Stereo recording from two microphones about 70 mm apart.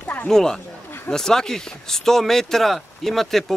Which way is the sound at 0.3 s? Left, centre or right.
Centre.